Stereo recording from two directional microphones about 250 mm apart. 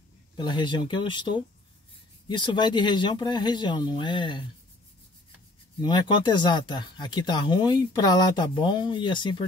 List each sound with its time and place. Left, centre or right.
0.4 s speech: centre
5.8 s speech: centre